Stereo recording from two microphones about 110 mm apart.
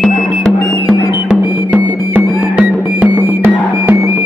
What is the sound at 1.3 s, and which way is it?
Music, 10° right (ahead or behind).